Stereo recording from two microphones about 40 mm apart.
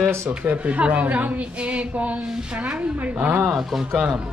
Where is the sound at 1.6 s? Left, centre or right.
Right.